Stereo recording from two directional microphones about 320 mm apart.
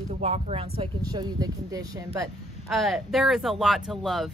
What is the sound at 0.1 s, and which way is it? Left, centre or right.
Speech, centre.